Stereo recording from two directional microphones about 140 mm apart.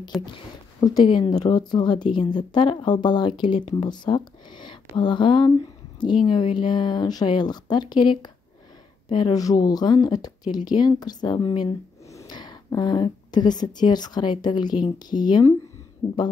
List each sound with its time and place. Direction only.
0.2 s speech: 30° left (ahead or behind)